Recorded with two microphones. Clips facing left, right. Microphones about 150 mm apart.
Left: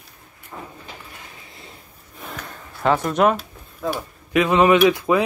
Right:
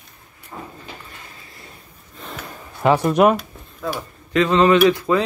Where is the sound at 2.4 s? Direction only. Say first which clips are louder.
Right 2 dB; 10° right (ahead or behind).